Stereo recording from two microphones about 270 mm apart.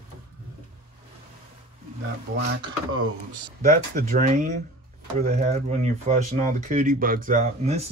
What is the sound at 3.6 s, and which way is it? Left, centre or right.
Speech, right.